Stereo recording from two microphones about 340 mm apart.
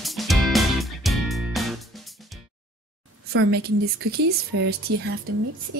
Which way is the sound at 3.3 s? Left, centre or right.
Right.